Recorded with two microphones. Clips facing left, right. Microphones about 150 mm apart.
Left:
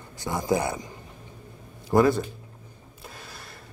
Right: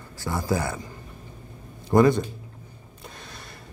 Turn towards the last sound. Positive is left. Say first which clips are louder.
# right 1 dB
turn(degrees=5)  # may be behind; listen again after turning